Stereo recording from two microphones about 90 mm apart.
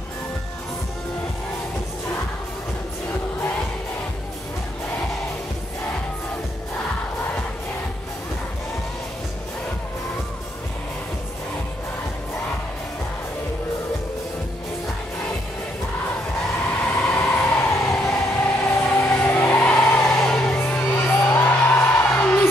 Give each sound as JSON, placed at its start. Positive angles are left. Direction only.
{"t": 16.8, "sound": "train", "side_deg": 15}
{"t": 17.6, "sound": "a sound", "side_deg": 30}
{"t": 18.4, "sound": "vehicle", "side_deg": 20}
{"t": 20.9, "sound": "music", "side_deg": 20}